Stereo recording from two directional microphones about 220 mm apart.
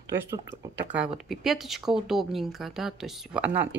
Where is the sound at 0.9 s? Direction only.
Centre (ahead or behind).